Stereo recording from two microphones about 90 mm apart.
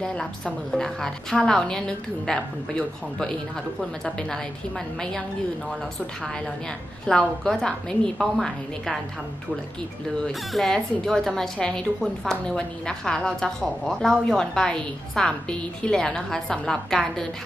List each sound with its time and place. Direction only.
0.0 s speech: 5° left (ahead or behind)
7.1 s speech: 5° left (ahead or behind)
10.2 s speech: 5° left (ahead or behind)